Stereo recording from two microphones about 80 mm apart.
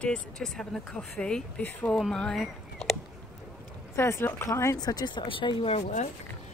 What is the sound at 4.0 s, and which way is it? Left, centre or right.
Speech, left.